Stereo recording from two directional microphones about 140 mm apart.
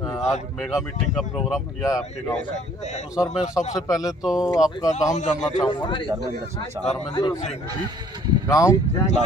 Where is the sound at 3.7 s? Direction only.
25° left (ahead or behind).